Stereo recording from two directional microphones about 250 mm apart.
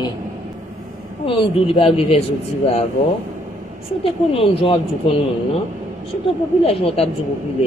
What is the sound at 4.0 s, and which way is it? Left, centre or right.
Speech, left.